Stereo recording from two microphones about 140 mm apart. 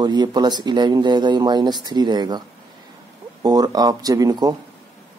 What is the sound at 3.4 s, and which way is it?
Speech, 30° right (ahead or behind).